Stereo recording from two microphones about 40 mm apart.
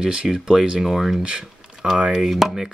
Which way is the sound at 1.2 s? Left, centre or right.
Right.